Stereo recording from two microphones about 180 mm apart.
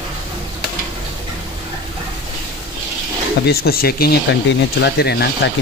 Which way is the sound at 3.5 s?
55° left (ahead or behind).